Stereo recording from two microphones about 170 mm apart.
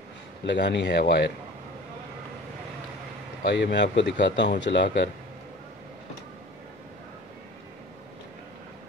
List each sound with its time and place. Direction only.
0.5 s speech: 90° left
3.4 s speech: 90° left